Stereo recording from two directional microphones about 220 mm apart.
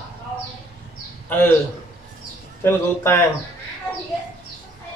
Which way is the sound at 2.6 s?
10° left (ahead or behind).